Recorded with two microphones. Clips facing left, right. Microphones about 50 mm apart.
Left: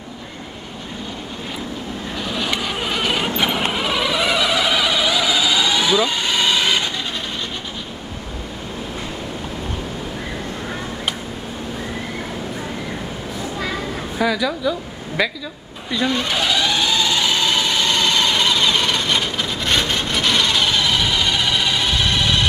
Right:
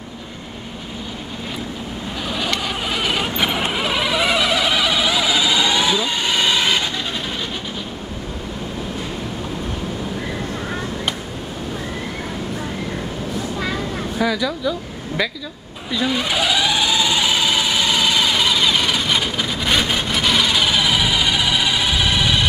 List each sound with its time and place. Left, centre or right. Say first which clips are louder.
2.2 s vehicle: even; centre
14.1 s a sound: left 1 dB; centre
15.9 s sewing machine: even; centre